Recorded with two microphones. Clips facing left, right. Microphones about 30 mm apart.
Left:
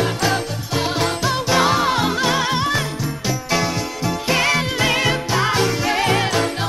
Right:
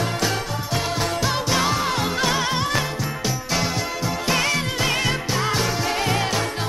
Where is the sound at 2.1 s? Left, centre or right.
Centre.